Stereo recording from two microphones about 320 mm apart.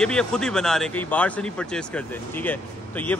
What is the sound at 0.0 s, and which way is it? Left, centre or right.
Speech, centre.